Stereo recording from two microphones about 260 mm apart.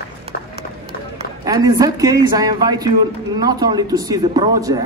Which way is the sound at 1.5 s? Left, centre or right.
Centre.